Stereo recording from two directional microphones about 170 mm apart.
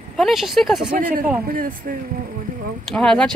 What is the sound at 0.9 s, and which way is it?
Speech, 60° right (ahead or behind).